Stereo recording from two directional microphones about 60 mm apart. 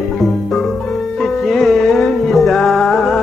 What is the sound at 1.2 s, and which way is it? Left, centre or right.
Music, centre.